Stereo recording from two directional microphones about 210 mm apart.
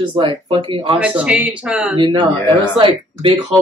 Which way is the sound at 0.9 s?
5° right (ahead or behind).